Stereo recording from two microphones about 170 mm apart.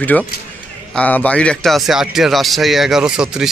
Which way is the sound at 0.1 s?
5° left (ahead or behind).